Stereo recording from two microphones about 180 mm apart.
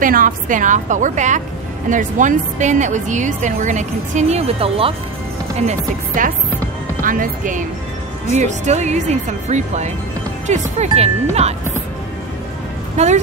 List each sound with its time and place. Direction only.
0.0 s a woman's voice: 50° right (ahead or behind); by 4.9 s 30° right (ahead or behind)
5.6 s a woman's voice: 45° right (ahead or behind)
12.9 s speech: 40° right (ahead or behind)